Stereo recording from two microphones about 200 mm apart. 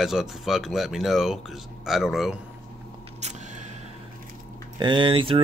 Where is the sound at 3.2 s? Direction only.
35° right (ahead or behind).